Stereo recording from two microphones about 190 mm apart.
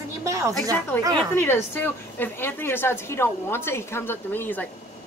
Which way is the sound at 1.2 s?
10° left (ahead or behind).